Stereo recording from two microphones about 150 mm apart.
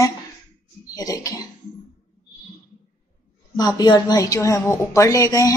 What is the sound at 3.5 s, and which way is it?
Speech, 25° left (ahead or behind).